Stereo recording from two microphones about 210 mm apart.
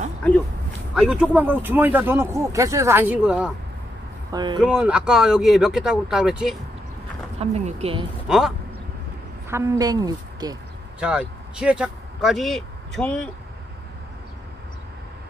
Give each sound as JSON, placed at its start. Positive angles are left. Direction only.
{"t": 0.9, "sound": "speech", "side_deg": -5}
{"t": 4.3, "sound": "speech", "side_deg": -20}
{"t": 4.6, "sound": "speech", "side_deg": -5}
{"t": 7.3, "sound": "speech", "side_deg": -30}
{"t": 8.3, "sound": "speech", "side_deg": 0}
{"t": 9.5, "sound": "speech", "side_deg": -15}
{"t": 11.0, "sound": "speech", "side_deg": -5}